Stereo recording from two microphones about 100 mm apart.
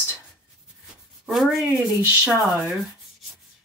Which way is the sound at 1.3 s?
Centre (ahead or behind).